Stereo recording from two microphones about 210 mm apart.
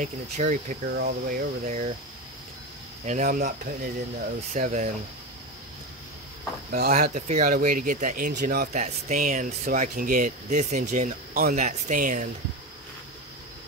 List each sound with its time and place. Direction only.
0.0 s speech: 35° right (ahead or behind)
3.1 s speech: 40° right (ahead or behind)
6.7 s speech: 45° right (ahead or behind)